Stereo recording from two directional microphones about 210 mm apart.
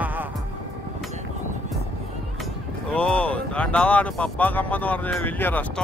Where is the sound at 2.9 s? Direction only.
5° left (ahead or behind).